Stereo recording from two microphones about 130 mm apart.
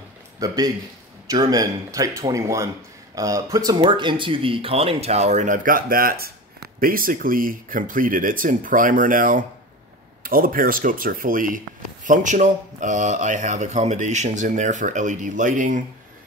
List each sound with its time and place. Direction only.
0.4 s a man's voice: 25° right (ahead or behind); by 15.8 s 75° right (ahead or behind)